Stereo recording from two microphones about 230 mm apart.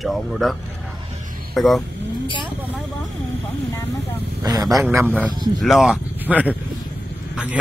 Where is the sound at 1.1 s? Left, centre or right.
Right.